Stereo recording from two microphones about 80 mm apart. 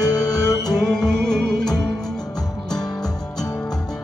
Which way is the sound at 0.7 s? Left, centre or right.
Centre.